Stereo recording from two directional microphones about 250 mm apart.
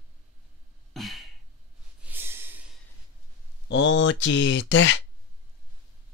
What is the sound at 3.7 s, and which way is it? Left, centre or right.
Speech, left.